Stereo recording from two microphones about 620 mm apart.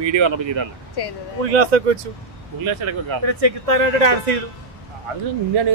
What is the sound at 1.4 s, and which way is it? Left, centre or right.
Speech, right.